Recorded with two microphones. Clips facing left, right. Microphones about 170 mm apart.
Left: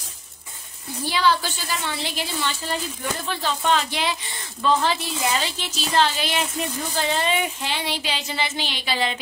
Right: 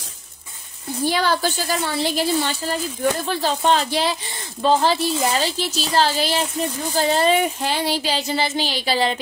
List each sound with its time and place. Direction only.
1.1 s speech: 45° right (ahead or behind)